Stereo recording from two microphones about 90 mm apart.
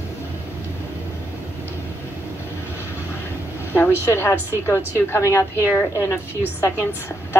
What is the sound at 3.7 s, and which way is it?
A woman's voice, 25° left (ahead or behind).